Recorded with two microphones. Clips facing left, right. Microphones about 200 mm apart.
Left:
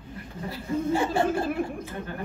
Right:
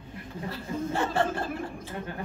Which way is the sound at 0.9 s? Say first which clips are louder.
Left 3 dB; 10° left (ahead or behind).